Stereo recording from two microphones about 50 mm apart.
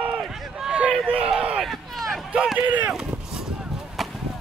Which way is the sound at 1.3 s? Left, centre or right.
Centre.